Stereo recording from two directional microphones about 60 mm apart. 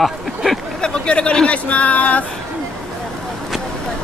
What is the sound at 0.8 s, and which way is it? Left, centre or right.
Speech, centre.